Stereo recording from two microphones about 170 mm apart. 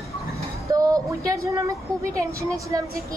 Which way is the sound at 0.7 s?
20° right (ahead or behind).